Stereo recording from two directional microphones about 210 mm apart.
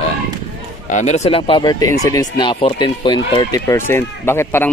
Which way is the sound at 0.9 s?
35° left (ahead or behind).